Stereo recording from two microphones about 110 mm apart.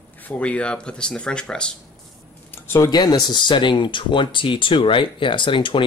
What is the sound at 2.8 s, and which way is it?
Speech, 40° left (ahead or behind).